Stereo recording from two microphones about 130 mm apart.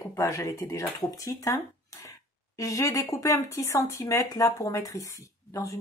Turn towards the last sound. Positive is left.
turn(degrees=25)  # may be behind; listen again after turning